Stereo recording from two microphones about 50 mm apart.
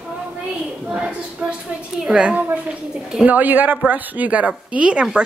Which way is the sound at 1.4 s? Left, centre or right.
Right.